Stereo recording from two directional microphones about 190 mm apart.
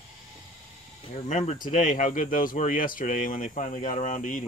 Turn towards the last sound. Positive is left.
turn(degrees=45)  # may be behind; listen again after turning